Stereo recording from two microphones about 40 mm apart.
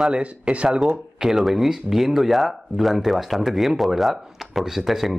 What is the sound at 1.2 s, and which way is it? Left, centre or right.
Speech, centre.